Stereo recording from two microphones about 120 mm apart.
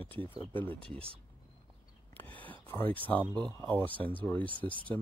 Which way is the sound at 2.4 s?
15° left (ahead or behind).